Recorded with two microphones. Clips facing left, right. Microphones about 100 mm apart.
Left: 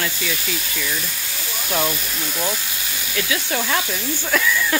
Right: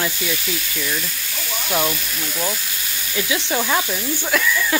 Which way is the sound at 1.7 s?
Centre (ahead or behind).